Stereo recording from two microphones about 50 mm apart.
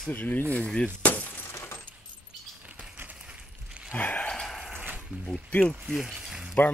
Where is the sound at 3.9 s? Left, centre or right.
Left.